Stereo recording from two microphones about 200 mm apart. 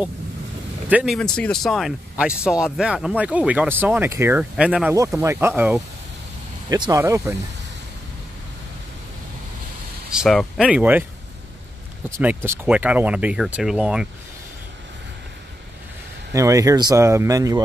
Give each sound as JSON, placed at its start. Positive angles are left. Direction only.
{"t": 0.8, "sound": "speech", "side_deg": -5}
{"t": 10.1, "sound": "speech", "side_deg": -5}
{"t": 12.1, "sound": "speech", "side_deg": -10}
{"t": 16.3, "sound": "speech", "side_deg": -15}